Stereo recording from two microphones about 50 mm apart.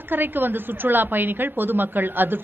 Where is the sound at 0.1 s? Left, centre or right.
Right.